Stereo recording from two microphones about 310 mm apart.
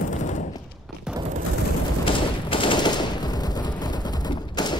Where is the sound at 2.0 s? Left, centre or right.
Centre.